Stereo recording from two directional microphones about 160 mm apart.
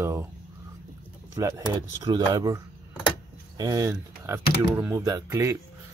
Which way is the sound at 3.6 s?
20° right (ahead or behind).